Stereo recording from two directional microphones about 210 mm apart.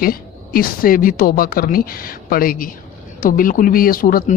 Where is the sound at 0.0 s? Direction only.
45° left (ahead or behind).